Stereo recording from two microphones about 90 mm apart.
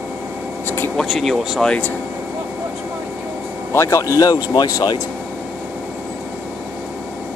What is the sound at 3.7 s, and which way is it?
Speech, 35° left (ahead or behind).